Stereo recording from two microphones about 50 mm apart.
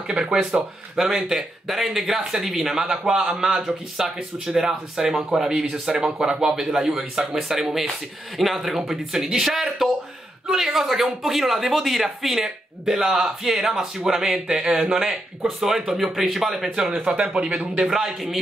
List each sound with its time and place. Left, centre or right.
0.3 s speech: centre
17.0 s speech: right
17.8 s speech: centre